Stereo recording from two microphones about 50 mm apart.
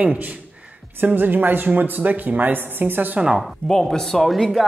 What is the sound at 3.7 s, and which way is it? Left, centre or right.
Speech, centre.